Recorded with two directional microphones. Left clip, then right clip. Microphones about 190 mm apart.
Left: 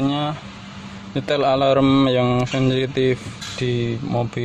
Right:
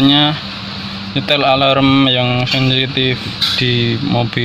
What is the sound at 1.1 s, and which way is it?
Speech, 20° left (ahead or behind).